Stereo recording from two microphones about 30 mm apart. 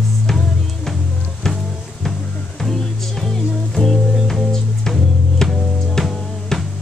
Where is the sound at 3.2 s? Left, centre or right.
Centre.